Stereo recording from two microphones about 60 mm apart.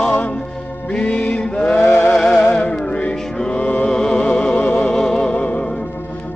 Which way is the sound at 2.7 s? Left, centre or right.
Centre.